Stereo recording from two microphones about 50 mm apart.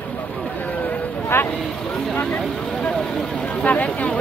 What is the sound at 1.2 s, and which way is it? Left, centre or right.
Vehicle, left.